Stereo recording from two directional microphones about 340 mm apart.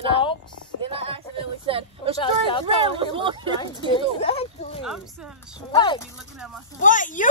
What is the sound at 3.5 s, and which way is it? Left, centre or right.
Speech, centre.